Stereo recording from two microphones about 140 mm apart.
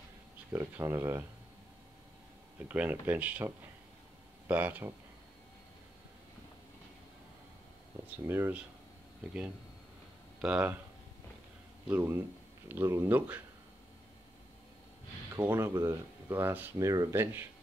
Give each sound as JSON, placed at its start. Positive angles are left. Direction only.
{"t": 0.5, "sound": "speech", "side_deg": -15}
{"t": 2.7, "sound": "speech", "side_deg": -10}
{"t": 8.0, "sound": "a sound", "side_deg": -15}
{"t": 8.3, "sound": "speech", "side_deg": -15}
{"t": 10.4, "sound": "speech", "side_deg": -10}
{"t": 11.9, "sound": "speech", "side_deg": -20}
{"t": 15.3, "sound": "speech", "side_deg": -20}
{"t": 16.7, "sound": "speech", "side_deg": -25}